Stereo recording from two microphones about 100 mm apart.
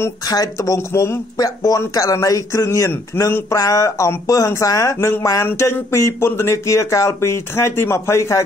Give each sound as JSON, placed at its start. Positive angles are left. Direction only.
{"t": 0.3, "sound": "speech", "side_deg": 35}